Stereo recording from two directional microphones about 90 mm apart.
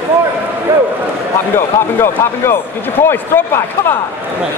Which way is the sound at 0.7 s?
35° right (ahead or behind).